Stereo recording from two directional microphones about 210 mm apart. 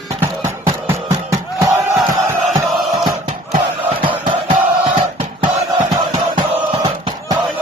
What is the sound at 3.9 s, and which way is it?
Music, 25° right (ahead or behind).